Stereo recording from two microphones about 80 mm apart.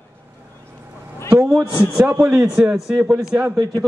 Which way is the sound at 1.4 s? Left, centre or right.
Right.